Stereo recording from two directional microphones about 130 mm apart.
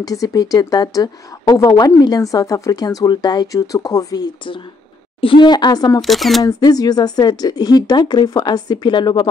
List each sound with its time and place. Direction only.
0.0 s speech: 30° left (ahead or behind)
5.9 s speech: centre (ahead or behind)
6.4 s speech: 30° left (ahead or behind)